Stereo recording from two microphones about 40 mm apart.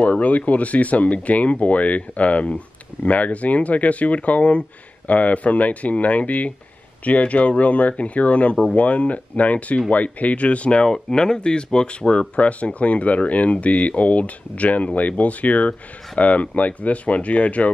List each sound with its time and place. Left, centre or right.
0.0 s speech: left
10.9 s speech: centre; by 17.6 s left